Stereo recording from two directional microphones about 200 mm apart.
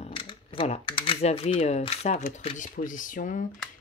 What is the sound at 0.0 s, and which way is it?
Speech, 25° left (ahead or behind).